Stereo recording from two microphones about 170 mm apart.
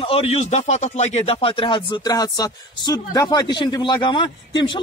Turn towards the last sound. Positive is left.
turn(degrees=30)  # may be behind; listen again after turning